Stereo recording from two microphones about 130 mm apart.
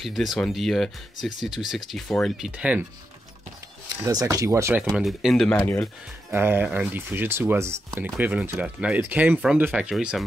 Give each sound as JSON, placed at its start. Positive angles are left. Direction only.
{"t": 0.0, "sound": "speech", "side_deg": 0}
{"t": 4.0, "sound": "speech", "side_deg": -25}
{"t": 4.9, "sound": "speech", "side_deg": 0}
{"t": 6.3, "sound": "speech", "side_deg": -15}
{"t": 9.8, "sound": "speech", "side_deg": -5}